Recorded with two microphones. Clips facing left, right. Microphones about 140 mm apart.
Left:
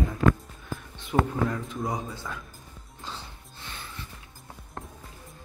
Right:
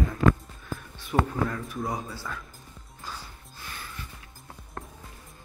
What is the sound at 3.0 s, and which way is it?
Music, 25° left (ahead or behind).